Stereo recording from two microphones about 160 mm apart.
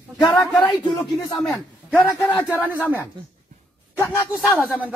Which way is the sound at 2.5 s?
10° right (ahead or behind).